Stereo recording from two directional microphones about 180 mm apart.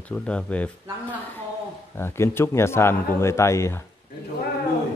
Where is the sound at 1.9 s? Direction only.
15° left (ahead or behind).